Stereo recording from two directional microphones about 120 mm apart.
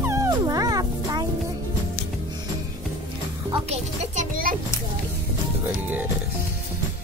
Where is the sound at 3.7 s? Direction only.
65° right (ahead or behind).